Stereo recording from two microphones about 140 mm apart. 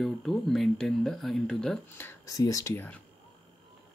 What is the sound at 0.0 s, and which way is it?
Speech, centre (ahead or behind).